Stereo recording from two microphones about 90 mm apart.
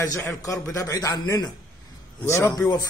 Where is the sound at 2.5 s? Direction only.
45° left (ahead or behind).